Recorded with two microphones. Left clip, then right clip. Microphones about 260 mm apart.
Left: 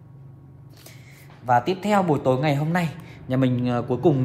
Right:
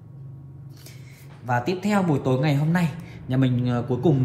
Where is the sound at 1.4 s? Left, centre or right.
Left.